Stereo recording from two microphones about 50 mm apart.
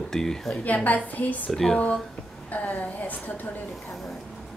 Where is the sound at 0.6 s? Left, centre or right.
Left.